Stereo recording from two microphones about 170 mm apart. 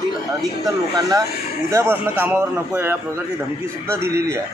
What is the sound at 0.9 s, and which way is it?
A man's voice, 20° right (ahead or behind).